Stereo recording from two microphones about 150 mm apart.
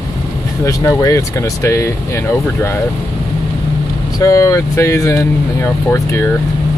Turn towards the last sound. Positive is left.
turn(degrees=20)  # may be behind; listen again after turning